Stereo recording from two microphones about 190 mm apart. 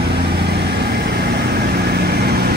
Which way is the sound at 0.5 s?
60° right (ahead or behind).